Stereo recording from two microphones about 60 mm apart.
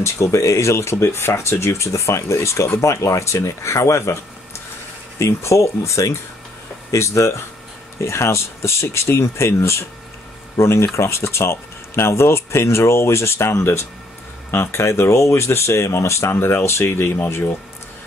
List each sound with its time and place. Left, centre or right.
0.0 s speech: left
5.2 s speech: left